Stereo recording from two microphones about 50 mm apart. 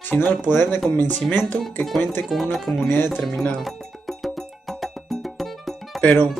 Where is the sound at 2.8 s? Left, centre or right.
Left.